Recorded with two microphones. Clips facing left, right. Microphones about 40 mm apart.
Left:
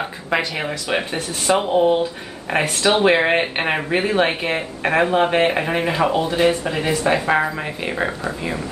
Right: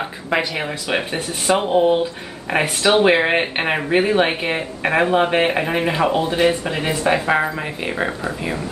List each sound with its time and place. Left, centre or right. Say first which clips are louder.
0.6 s speech: even; centre
6.6 s speech: left 1 dB; right
7.1 s speech: right 1 dB; centre